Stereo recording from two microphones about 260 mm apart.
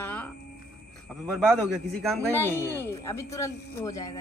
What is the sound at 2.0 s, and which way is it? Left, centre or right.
A woman's voice, centre.